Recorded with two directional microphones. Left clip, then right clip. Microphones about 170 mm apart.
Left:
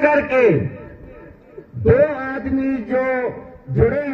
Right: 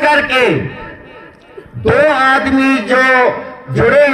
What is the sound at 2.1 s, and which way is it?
A man's voice, 35° left (ahead or behind).